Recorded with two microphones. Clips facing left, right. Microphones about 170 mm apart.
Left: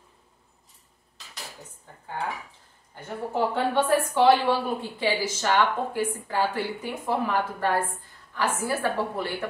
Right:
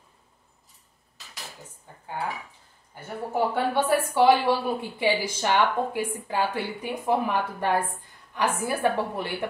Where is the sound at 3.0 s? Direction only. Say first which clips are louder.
Even; 10° right (ahead or behind).